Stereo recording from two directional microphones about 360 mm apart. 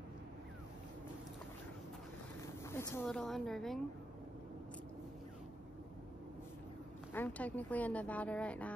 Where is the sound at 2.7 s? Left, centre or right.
Centre.